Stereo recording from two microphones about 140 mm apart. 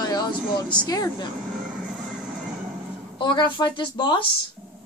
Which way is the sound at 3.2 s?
35° left (ahead or behind).